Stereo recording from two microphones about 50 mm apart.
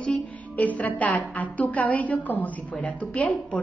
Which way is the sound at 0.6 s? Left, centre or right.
Left.